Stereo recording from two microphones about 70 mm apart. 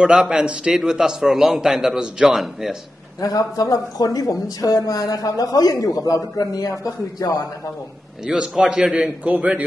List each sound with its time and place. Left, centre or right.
0.0 s a man's voice: centre
3.2 s a woman's voice: left
8.3 s a man's voice: centre